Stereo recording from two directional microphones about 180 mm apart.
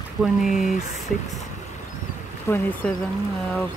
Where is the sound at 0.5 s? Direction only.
40° left (ahead or behind).